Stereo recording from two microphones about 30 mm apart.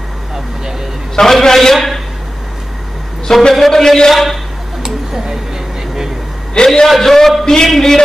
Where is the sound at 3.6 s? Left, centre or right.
Centre.